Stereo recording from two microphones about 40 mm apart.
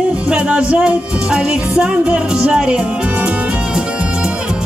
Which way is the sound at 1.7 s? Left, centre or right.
Right.